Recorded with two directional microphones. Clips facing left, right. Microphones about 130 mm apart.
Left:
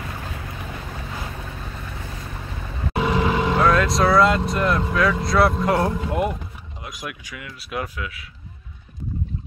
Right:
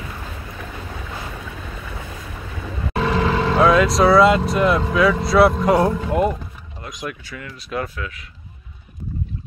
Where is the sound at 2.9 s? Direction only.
10° left (ahead or behind).